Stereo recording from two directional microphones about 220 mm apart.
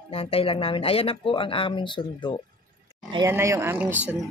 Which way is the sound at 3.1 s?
15° right (ahead or behind).